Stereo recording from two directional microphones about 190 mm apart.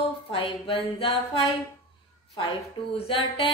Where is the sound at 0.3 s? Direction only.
30° left (ahead or behind).